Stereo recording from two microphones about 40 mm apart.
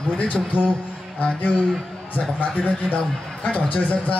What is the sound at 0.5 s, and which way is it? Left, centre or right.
Speech, left.